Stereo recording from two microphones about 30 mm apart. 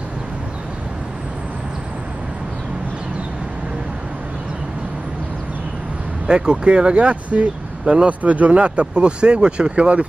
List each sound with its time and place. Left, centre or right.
6.2 s speech: right
8.1 s speech: right